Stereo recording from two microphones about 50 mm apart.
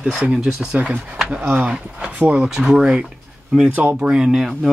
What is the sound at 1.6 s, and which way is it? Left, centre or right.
Speech, right.